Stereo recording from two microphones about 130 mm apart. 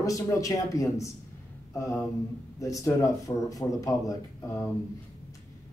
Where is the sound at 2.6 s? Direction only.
25° left (ahead or behind).